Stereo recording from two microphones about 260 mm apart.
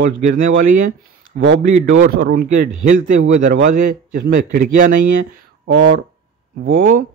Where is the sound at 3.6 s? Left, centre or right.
Right.